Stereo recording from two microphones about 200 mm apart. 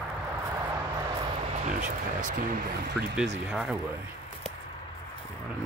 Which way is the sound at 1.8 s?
40° right (ahead or behind).